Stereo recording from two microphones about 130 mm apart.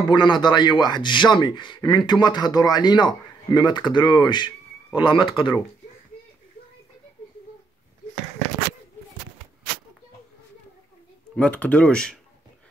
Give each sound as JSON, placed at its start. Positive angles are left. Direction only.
{"t": 0.1, "sound": "speech", "side_deg": 35}
{"t": 11.3, "sound": "speech", "side_deg": 10}